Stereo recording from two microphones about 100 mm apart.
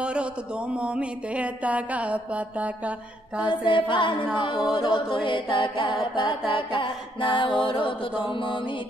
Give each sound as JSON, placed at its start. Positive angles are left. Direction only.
{"t": 0.0, "sound": "speech", "side_deg": -10}
{"t": 3.4, "sound": "mantra", "side_deg": 55}